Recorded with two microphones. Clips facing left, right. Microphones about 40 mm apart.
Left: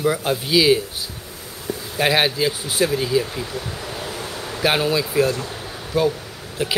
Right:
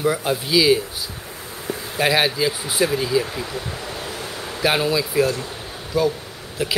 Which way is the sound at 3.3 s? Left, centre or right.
Centre.